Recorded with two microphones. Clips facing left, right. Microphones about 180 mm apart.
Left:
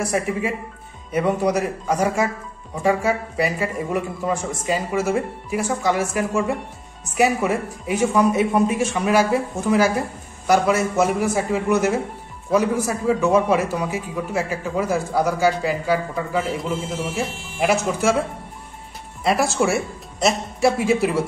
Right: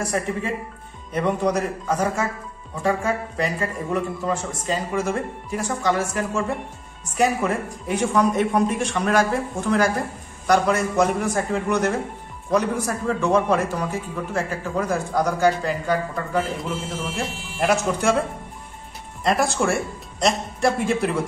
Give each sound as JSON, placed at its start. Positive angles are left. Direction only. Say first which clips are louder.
{"t": 0.0, "sound": "a man's voice", "louder": "left 3 dB", "side_deg": 10}
{"t": 19.2, "sound": "speech", "louder": "left 1 dB", "side_deg": 5}